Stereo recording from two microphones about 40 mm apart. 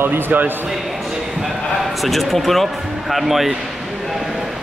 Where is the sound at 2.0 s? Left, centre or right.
Centre.